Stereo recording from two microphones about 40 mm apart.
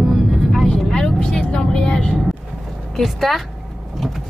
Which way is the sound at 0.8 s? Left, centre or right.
Centre.